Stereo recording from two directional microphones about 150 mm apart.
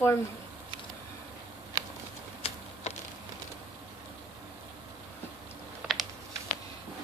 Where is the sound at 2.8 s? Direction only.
45° left (ahead or behind).